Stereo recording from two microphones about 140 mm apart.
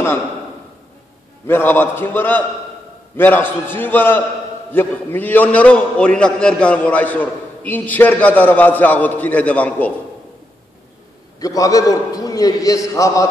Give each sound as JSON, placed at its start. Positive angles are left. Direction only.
{"t": 1.5, "sound": "a man's voice", "side_deg": 15}
{"t": 11.3, "sound": "a man's voice", "side_deg": 25}